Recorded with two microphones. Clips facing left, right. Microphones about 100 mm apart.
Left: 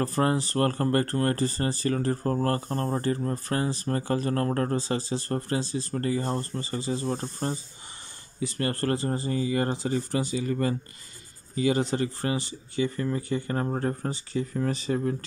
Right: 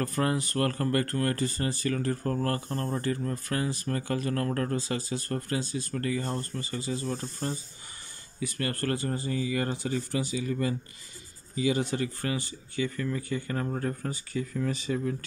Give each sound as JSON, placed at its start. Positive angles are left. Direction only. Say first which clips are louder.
{"t": 0.0, "sound": "speech", "louder": "left 3 dB", "side_deg": 30}
{"t": 11.8, "sound": "speech", "louder": "left 3 dB", "side_deg": 30}